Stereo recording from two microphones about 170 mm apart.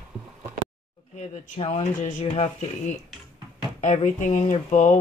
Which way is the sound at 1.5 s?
35° left (ahead or behind).